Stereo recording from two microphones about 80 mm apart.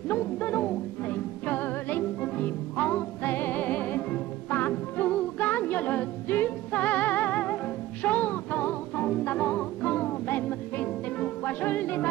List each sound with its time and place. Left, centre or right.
0.1 s music: left